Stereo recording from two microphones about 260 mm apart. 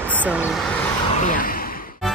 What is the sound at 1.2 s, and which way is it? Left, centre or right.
Speech, left.